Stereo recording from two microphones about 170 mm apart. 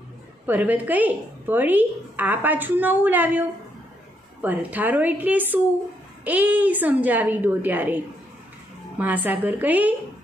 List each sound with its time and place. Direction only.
0.5 s a woman's voice: 10° right (ahead or behind)